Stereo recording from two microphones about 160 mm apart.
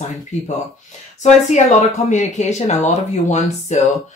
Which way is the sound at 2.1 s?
45° left (ahead or behind).